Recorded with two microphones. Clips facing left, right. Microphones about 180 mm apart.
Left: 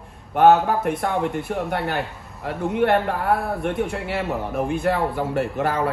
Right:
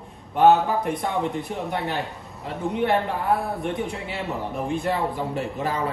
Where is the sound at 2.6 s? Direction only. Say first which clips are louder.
Left 3 dB; centre (ahead or behind).